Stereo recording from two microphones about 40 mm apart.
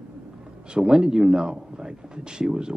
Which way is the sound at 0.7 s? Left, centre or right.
Right.